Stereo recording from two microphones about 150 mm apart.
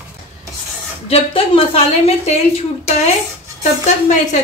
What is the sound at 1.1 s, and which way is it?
A woman's voice, 40° left (ahead or behind).